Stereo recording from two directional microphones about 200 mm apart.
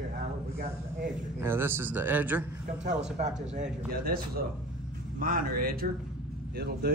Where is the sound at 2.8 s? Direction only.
35° right (ahead or behind).